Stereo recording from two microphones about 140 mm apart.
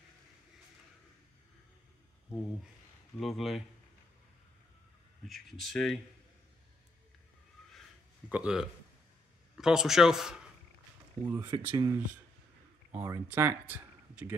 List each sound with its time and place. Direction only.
3.2 s speech: centre (ahead or behind)
5.2 s speech: centre (ahead or behind)
8.3 s a man's voice: 5° right (ahead or behind)
11.3 s speech: 30° right (ahead or behind)
12.9 s speech: 15° right (ahead or behind)